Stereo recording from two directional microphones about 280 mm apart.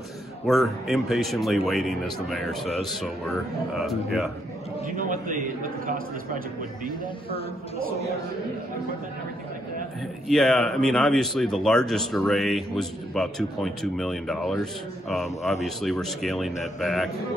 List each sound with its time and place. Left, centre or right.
0.5 s speech: centre
4.8 s a man's voice: right
10.2 s speech: centre